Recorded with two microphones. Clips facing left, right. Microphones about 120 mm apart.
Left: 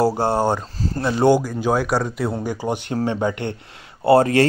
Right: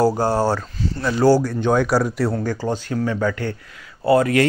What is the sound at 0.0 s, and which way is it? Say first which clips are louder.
Speech: right 1 dB; 25° left (ahead or behind).